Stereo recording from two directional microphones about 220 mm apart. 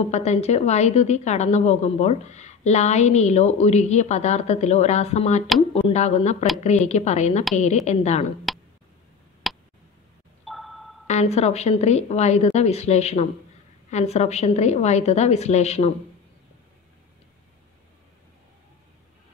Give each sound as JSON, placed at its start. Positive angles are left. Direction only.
{"t": 0.0, "sound": "a woman's voice", "side_deg": 30}
{"t": 8.5, "sound": "tick", "side_deg": 0}
{"t": 9.5, "sound": "a sound", "side_deg": 0}
{"t": 11.1, "sound": "a woman's voice", "side_deg": 30}